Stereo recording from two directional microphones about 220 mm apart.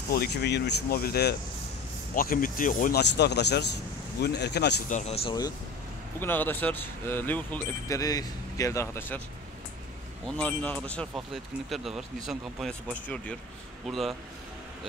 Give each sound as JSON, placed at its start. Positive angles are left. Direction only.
{"t": 0.1, "sound": "speech", "side_deg": 45}
{"t": 4.8, "sound": "speech", "side_deg": 30}
{"t": 6.1, "sound": "speech", "side_deg": 10}
{"t": 10.2, "sound": "speech", "side_deg": 5}